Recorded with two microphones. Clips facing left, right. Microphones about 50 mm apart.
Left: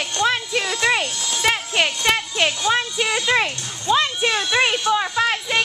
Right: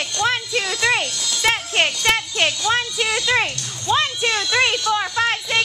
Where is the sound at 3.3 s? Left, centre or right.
Centre.